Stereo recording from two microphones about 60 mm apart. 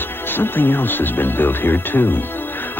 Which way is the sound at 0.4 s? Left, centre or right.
Left.